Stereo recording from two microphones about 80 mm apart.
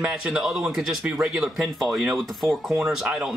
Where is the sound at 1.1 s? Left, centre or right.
Centre.